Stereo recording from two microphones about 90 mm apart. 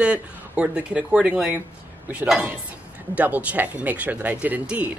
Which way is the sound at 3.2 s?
15° right (ahead or behind).